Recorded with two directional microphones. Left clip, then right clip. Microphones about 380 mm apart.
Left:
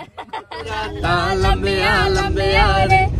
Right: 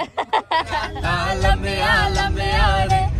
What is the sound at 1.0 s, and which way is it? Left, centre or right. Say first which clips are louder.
Music: left 5 dB; centre.